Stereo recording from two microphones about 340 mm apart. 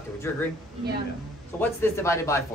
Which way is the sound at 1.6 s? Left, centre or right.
Centre.